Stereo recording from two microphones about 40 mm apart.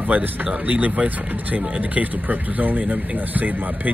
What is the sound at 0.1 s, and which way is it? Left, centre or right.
Speech, right.